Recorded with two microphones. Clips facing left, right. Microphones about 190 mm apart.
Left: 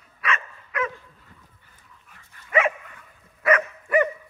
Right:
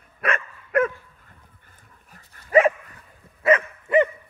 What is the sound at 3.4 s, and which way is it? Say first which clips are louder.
Dog: right 2 dB; 25° right (ahead or behind).